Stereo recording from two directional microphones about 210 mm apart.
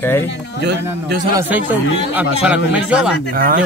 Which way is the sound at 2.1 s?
5° right (ahead or behind).